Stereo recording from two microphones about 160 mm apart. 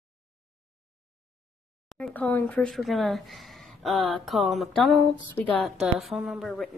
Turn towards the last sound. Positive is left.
turn(degrees=0)  # may be behind; listen again after turning